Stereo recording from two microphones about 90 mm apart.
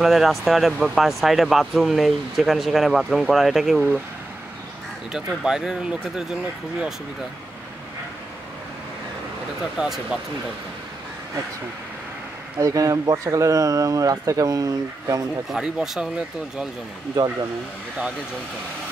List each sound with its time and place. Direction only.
0.0 s speech: centre (ahead or behind)
5.4 s speech: 5° right (ahead or behind)
9.8 s speech: 5° right (ahead or behind)
12.5 s speech: 40° right (ahead or behind)
15.5 s speech: 5° right (ahead or behind)
17.2 s speech: 50° right (ahead or behind)